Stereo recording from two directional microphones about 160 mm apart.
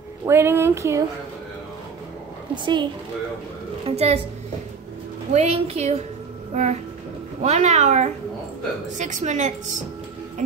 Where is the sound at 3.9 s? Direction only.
40° right (ahead or behind).